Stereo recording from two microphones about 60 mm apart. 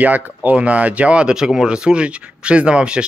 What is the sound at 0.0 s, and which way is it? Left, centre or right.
Speech, right.